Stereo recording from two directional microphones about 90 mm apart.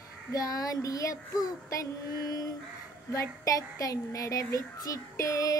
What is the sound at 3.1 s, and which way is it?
A child's voice, 40° left (ahead or behind).